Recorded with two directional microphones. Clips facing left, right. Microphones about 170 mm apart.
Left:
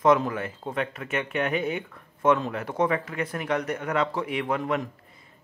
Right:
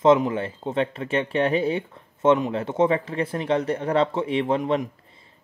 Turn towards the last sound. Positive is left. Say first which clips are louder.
# right 4 dB
turn(degrees=-25)  # may be behind; listen again after turning